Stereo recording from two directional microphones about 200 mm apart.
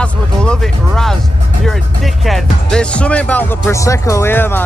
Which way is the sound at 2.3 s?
5° left (ahead or behind).